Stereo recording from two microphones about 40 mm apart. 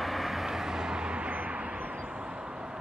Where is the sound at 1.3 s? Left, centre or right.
Right.